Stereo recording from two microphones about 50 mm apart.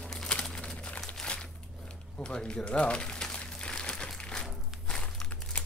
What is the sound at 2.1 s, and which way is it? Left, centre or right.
Crumpling, centre.